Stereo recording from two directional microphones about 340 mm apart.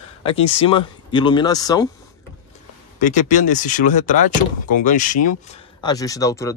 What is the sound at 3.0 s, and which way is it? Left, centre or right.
Speech, left.